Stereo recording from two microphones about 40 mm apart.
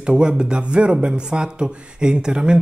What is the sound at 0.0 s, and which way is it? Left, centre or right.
Speech, right.